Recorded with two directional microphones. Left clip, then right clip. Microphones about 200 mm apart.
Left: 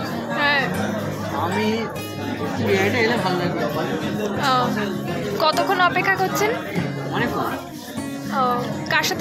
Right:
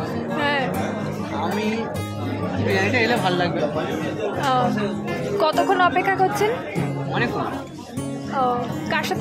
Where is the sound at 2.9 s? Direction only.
20° right (ahead or behind).